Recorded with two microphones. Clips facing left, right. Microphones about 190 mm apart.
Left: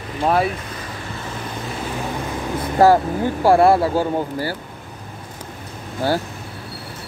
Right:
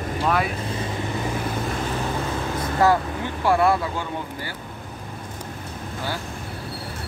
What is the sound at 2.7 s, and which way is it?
Speech, 35° left (ahead or behind).